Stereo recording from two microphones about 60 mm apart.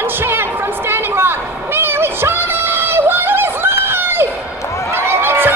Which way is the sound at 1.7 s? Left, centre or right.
Right.